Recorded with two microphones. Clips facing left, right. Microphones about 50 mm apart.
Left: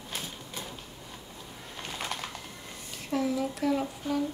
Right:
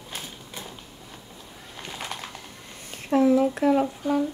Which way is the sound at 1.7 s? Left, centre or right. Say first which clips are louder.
Right 1 dB; centre.